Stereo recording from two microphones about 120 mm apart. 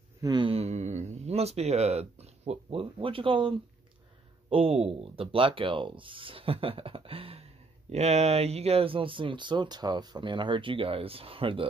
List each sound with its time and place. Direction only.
0.2 s speech: 35° right (ahead or behind)
0.5 s speech: 60° right (ahead or behind)
7.9 s speech: 65° right (ahead or behind); by 11.6 s 50° right (ahead or behind)